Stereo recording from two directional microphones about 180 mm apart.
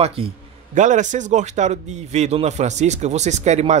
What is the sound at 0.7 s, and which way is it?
Speech, 45° right (ahead or behind).